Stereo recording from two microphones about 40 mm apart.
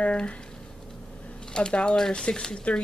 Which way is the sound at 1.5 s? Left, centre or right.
Left.